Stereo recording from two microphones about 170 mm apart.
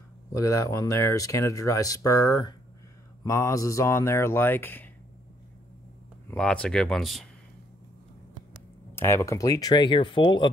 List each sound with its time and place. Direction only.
0.3 s speech: 20° left (ahead or behind)
6.3 s speech: 5° left (ahead or behind)
8.9 s speech: 15° left (ahead or behind)